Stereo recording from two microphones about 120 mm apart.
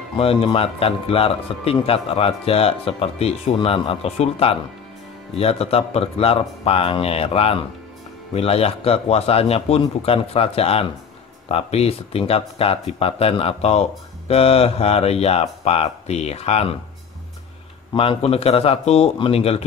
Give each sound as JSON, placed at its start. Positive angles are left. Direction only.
{"t": 0.2, "sound": "speech", "side_deg": 50}
{"t": 17.9, "sound": "speech", "side_deg": 55}